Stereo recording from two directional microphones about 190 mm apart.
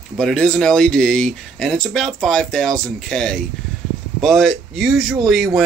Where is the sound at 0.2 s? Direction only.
5° left (ahead or behind).